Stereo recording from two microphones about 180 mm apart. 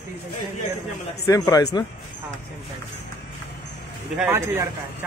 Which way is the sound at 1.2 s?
20° left (ahead or behind).